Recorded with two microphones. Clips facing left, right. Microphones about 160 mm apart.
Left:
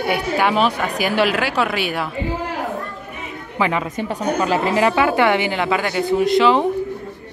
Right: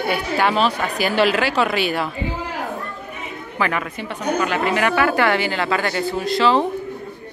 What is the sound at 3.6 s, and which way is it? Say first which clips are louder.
Speech: left 2 dB; 20° left (ahead or behind).